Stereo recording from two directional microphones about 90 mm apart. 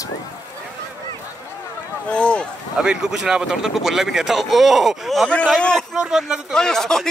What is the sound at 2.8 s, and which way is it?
Speech, 10° right (ahead or behind).